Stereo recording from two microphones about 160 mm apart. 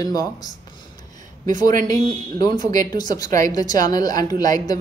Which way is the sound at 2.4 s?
25° left (ahead or behind).